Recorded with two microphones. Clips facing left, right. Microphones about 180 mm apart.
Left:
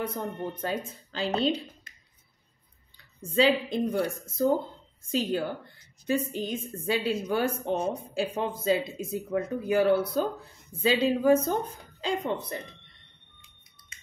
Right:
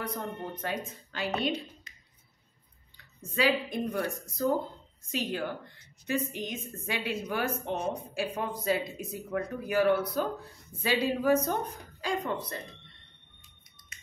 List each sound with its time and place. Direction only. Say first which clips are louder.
0.0 s a woman's voice: left 4 dB; 30° left (ahead or behind)
3.3 s a woman's voice: left 4 dB; 30° left (ahead or behind)
5.1 s a woman's voice: left 5 dB; 35° left (ahead or behind)